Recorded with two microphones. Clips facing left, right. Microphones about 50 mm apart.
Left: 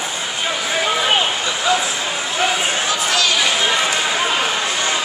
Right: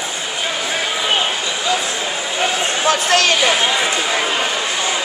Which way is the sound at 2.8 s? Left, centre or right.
Right.